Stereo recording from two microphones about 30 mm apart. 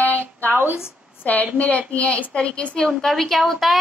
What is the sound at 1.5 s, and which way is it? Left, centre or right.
Speech, left.